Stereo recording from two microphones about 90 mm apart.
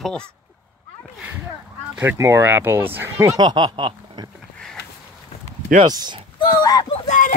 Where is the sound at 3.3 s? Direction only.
50° right (ahead or behind).